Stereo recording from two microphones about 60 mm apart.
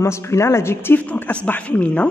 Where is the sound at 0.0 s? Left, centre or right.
Left.